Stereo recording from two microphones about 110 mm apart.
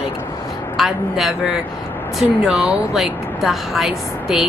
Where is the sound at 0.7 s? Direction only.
Centre (ahead or behind).